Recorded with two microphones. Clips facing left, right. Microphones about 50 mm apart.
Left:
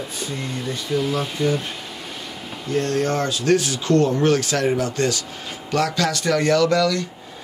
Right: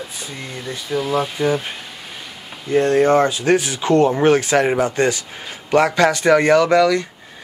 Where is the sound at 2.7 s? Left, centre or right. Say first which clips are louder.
Right 7 dB; right.